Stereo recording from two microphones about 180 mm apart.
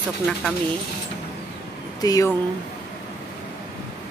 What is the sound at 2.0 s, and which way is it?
Speech, 20° left (ahead or behind).